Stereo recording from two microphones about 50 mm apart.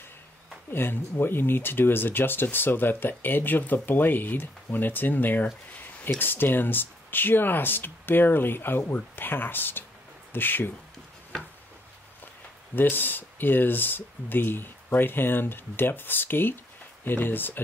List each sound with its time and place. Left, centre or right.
0.7 s speech: left
12.7 s speech: left